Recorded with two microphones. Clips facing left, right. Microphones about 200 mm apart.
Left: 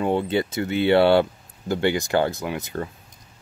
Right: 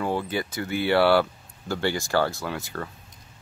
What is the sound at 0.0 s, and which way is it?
Speech, 25° left (ahead or behind).